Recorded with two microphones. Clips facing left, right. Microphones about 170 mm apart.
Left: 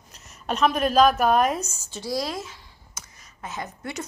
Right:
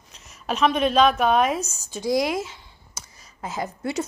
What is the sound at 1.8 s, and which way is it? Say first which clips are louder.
Speech: right 6 dB; 15° right (ahead or behind).